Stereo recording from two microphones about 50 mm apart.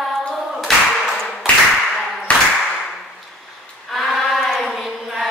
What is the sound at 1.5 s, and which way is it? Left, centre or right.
Tap, left.